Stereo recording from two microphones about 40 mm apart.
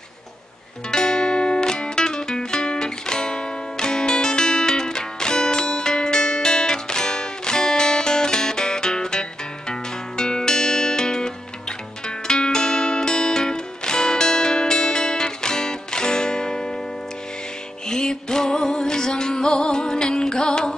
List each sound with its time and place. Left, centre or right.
0.9 s music: centre
17.8 s music: centre